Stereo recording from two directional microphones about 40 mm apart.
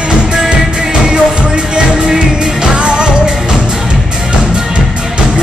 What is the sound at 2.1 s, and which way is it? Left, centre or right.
Music, centre.